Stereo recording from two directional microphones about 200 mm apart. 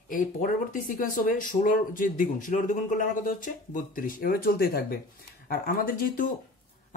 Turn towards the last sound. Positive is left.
turn(degrees=45)  # may be behind; listen again after turning